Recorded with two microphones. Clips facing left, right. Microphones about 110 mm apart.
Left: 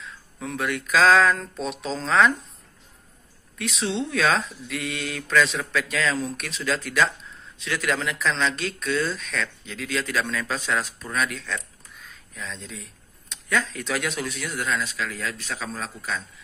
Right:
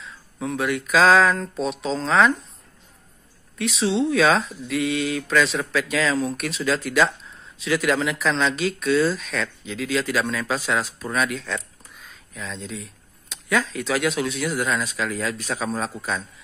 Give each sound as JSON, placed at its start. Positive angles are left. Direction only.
{"t": 0.0, "sound": "speech", "side_deg": 0}
{"t": 3.5, "sound": "speech", "side_deg": 0}
{"t": 14.4, "sound": "speech", "side_deg": -25}
{"t": 15.4, "sound": "a man's voice", "side_deg": -35}